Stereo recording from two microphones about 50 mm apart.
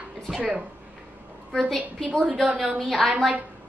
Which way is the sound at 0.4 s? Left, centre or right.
Right.